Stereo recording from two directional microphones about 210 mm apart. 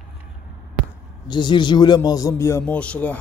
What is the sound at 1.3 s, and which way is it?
Speech, 20° left (ahead or behind).